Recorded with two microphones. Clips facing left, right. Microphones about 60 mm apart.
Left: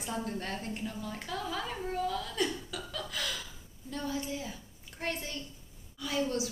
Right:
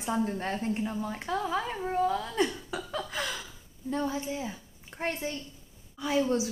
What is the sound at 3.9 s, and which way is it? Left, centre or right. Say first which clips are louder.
A woman's voice: right 5 dB; right.